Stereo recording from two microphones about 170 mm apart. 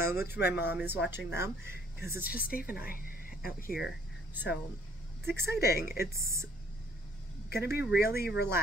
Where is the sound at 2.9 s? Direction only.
55° left (ahead or behind).